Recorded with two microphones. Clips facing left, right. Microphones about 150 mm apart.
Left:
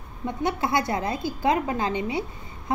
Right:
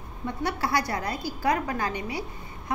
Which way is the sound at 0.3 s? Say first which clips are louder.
Left 3 dB; 20° left (ahead or behind).